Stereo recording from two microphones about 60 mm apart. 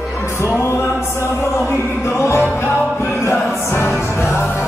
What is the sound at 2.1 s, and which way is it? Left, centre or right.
Music, left.